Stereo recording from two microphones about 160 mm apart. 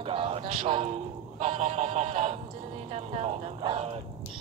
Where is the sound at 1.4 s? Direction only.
45° right (ahead or behind).